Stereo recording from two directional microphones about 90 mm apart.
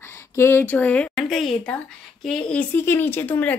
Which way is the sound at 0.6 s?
15° left (ahead or behind).